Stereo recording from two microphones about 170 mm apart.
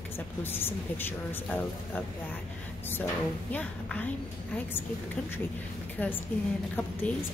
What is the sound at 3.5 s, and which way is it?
Speech, 10° left (ahead or behind).